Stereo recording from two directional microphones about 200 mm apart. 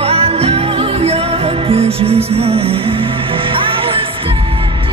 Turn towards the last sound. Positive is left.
turn(degrees=-25)  # may be behind; listen again after turning